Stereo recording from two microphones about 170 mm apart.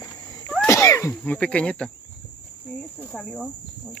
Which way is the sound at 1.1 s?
5° left (ahead or behind).